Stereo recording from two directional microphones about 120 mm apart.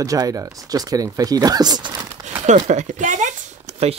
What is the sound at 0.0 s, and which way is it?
Speech, 30° right (ahead or behind).